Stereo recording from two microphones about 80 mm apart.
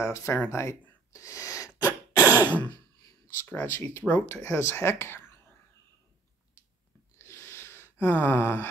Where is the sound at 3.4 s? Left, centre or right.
Left.